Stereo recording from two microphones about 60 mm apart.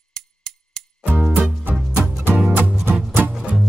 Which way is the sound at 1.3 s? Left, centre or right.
Right.